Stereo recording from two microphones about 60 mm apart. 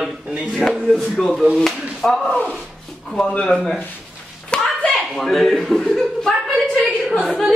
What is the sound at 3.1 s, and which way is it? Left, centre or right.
Speech, centre.